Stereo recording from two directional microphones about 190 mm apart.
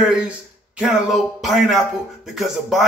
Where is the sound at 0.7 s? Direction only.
Centre (ahead or behind).